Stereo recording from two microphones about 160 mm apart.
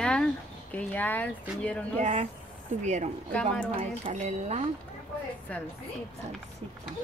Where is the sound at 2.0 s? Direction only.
45° right (ahead or behind).